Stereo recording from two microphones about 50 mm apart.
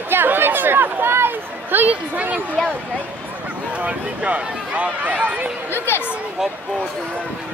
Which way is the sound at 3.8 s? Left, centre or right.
Right.